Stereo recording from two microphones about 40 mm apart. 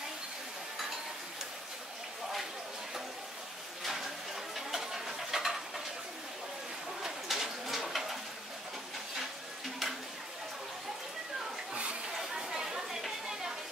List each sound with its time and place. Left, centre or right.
3.8 s a sound: centre
4.6 s stir: centre
7.0 s bird: centre
11.7 s chatter: right
12.1 s chatter: centre